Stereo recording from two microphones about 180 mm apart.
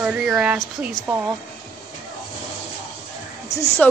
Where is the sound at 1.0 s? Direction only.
10° right (ahead or behind).